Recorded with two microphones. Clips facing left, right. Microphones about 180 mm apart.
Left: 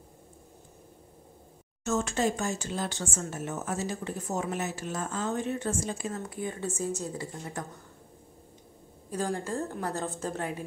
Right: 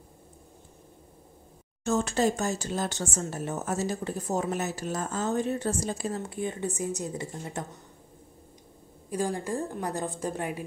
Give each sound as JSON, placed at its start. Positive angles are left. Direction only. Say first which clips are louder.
{"t": 1.9, "sound": "a woman's voice", "louder": "right 2 dB", "side_deg": -35}
{"t": 9.1, "sound": "a woman's voice", "louder": "right 2 dB", "side_deg": -15}